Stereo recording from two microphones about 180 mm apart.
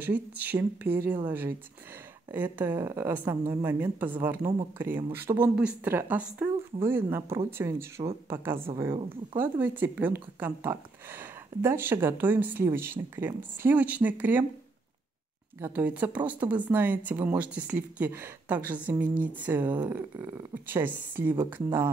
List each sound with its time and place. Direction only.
0.0 s speech: 10° right (ahead or behind)
15.6 s speech: 10° right (ahead or behind)